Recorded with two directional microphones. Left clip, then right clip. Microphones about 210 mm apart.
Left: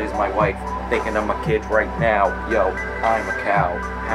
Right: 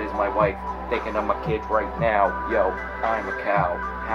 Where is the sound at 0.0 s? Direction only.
5° left (ahead or behind).